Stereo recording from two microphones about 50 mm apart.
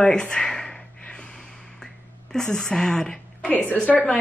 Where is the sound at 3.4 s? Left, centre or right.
Left.